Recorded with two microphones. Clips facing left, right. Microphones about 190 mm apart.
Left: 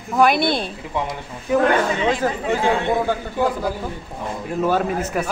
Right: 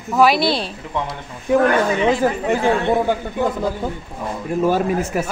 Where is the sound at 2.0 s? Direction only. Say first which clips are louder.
Right 3 dB; 15° right (ahead or behind).